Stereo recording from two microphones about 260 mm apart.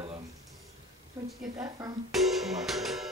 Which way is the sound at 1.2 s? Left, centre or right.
Centre.